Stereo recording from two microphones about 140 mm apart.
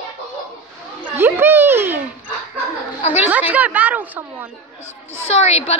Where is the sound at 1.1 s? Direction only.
15° right (ahead or behind).